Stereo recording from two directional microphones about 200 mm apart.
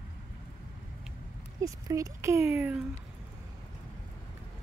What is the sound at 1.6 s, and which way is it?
Speech, 15° right (ahead or behind).